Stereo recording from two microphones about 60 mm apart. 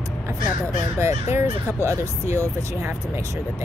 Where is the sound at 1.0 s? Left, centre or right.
Right.